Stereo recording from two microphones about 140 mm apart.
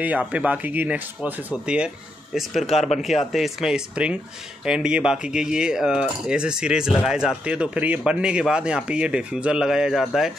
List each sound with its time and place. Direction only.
0.0 s speech: 10° right (ahead or behind)
2.6 s speech: 50° left (ahead or behind)
3.3 s speech: centre (ahead or behind)